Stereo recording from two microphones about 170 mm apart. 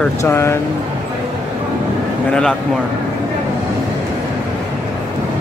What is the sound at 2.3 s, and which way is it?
Speech, 5° left (ahead or behind).